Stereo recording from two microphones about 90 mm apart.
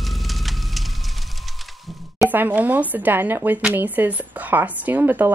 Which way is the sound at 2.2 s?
20° right (ahead or behind).